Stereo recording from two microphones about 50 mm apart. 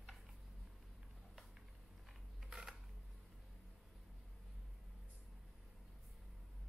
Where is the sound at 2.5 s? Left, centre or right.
Centre.